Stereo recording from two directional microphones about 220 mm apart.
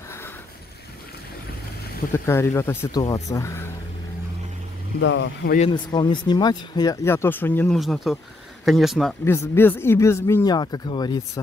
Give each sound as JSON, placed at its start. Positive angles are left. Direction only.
{"t": 2.1, "sound": "speech", "side_deg": 10}
{"t": 5.0, "sound": "speech", "side_deg": 55}
{"t": 5.6, "sound": "speech", "side_deg": 20}
{"t": 9.2, "sound": "speech", "side_deg": 10}